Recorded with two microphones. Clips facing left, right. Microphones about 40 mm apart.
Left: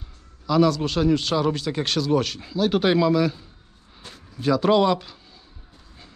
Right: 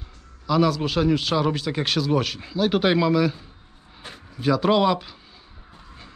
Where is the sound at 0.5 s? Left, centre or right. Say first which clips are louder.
Left 1 dB; centre.